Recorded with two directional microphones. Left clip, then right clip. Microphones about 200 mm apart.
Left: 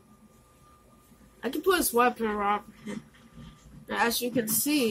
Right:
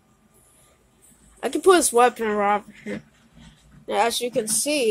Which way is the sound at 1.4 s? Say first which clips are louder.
Right 9 dB; 55° right (ahead or behind).